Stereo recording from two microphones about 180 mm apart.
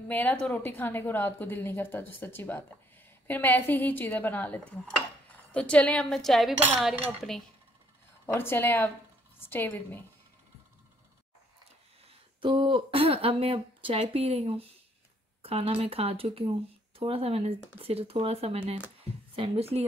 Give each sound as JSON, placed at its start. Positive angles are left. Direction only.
{"t": 0.1, "sound": "a woman's voice", "side_deg": 10}
{"t": 6.6, "sound": "cutlery", "side_deg": -5}
{"t": 8.3, "sound": "a woman's voice", "side_deg": 15}
{"t": 12.4, "sound": "speech", "side_deg": -25}